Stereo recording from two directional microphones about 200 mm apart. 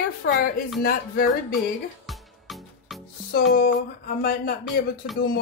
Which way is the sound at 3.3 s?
50° left (ahead or behind).